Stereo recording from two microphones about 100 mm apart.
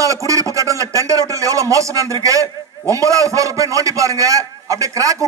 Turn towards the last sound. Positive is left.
turn(degrees=-35)  # may be behind; listen again after turning